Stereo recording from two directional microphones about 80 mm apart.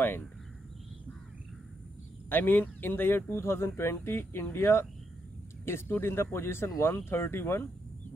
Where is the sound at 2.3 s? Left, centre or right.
Left.